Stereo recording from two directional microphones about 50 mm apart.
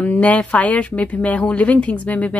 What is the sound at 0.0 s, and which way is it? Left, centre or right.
Speech, left.